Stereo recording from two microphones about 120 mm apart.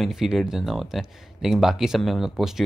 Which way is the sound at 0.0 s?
5° right (ahead or behind).